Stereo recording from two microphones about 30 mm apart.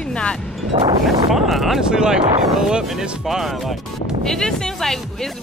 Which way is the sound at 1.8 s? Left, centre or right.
Right.